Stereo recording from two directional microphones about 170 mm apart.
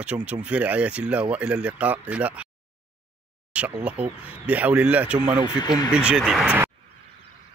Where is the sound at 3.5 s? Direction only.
10° right (ahead or behind).